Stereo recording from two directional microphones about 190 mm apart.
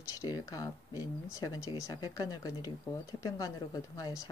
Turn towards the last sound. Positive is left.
turn(degrees=15)  # may be behind; listen again after turning